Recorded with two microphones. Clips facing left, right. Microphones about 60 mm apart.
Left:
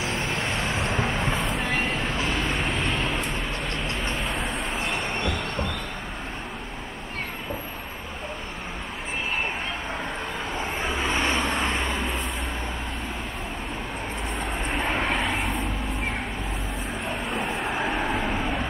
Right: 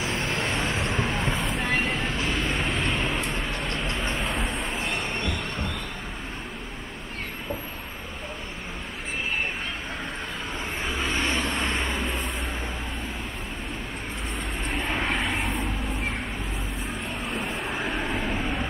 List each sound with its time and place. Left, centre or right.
0.0 s vehicle: centre
11.1 s vehicle: left
11.3 s vehicle: centre
14.7 s vehicle: centre
17.3 s vehicle: centre